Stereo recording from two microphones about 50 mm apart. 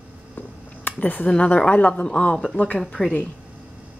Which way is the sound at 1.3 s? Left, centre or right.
Left.